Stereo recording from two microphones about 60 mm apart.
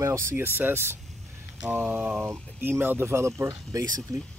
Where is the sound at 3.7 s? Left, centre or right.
Right.